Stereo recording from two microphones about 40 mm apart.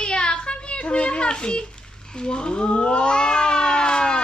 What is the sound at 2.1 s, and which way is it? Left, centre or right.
Speech, left.